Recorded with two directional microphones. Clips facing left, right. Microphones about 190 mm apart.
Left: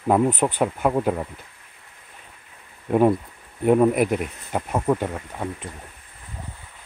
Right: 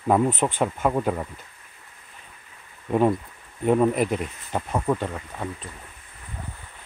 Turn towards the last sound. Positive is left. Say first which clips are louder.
# left 2 dB
turn(degrees=15)  # may be behind; listen again after turning